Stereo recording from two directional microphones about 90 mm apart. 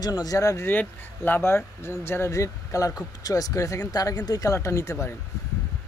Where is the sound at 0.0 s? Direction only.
45° left (ahead or behind).